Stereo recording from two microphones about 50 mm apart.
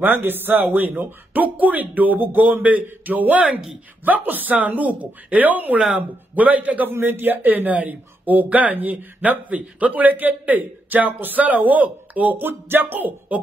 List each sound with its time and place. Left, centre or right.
0.0 s a man's voice: right
6.9 s speech: right
12.4 s speech: right